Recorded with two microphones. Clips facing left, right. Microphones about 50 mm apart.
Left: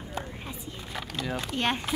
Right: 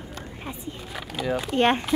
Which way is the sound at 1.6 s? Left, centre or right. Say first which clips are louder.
Right 8 dB; right.